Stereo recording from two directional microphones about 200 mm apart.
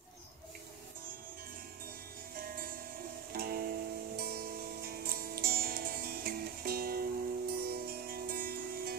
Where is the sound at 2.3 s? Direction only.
45° right (ahead or behind).